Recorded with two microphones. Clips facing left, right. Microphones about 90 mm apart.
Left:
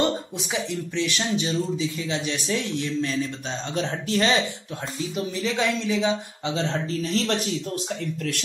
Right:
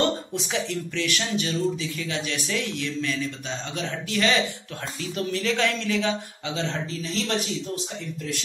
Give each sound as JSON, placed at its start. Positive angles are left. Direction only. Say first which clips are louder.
{"t": 0.9, "sound": "a man's voice", "louder": "left 2 dB", "side_deg": 25}
{"t": 5.1, "sound": "speech", "louder": "right 2 dB", "side_deg": 15}
{"t": 6.4, "sound": "a man's voice", "louder": "left 2 dB", "side_deg": 40}